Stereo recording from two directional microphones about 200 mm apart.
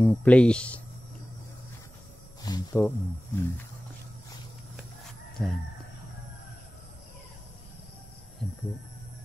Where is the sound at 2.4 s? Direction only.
15° left (ahead or behind).